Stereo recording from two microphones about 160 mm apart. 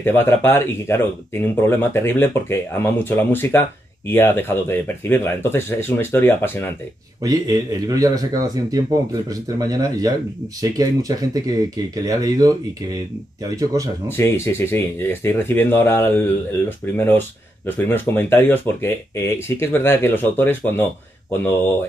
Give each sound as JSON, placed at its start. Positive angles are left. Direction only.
{"t": 0.0, "sound": "speech", "side_deg": 15}
{"t": 7.2, "sound": "speech", "side_deg": -25}
{"t": 14.0, "sound": "speech", "side_deg": 15}